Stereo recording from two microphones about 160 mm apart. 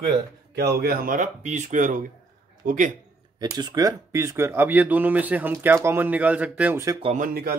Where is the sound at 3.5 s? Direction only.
25° right (ahead or behind).